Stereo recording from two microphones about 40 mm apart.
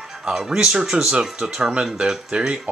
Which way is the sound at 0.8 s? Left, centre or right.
Centre.